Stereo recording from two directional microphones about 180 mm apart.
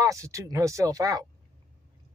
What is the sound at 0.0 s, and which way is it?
Speech, 15° right (ahead or behind).